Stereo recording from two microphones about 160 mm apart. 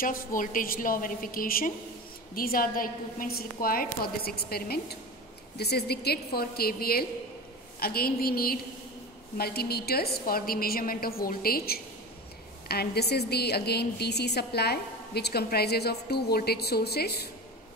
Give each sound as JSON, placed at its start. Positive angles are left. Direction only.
{"t": 0.0, "sound": "a woman's voice", "side_deg": 60}
{"t": 5.6, "sound": "a woman's voice", "side_deg": 90}
{"t": 12.6, "sound": "a woman's voice", "side_deg": 80}